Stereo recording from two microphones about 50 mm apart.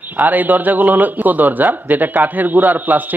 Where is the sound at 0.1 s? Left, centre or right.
Right.